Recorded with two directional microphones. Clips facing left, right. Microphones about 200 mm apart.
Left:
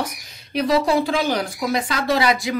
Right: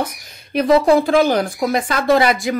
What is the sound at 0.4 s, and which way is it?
A woman's voice, 50° right (ahead or behind).